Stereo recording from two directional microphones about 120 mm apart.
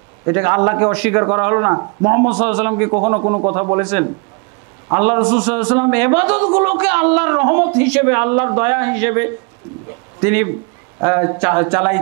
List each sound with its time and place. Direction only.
0.2 s a man's voice: 25° right (ahead or behind)